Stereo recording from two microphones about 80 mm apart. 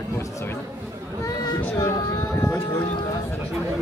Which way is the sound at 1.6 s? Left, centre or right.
Left.